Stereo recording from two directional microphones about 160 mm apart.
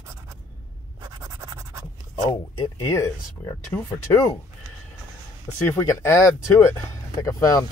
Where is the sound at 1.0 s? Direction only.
20° right (ahead or behind).